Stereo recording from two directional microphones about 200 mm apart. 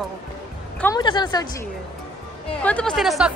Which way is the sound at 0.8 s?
20° left (ahead or behind).